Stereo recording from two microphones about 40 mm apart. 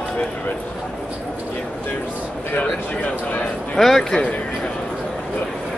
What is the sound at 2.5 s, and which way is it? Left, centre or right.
Speech, left.